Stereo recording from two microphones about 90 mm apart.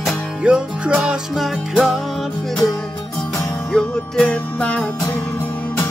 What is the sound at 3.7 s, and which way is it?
Music, 10° left (ahead or behind).